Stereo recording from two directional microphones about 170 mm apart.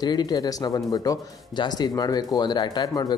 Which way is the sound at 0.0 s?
25° left (ahead or behind).